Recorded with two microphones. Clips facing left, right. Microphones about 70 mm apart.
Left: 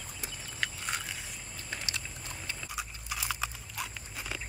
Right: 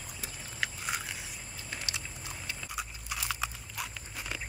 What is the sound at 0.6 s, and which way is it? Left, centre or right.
Scrape, centre.